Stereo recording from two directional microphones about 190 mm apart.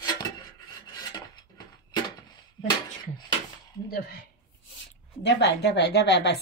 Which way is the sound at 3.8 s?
55° left (ahead or behind).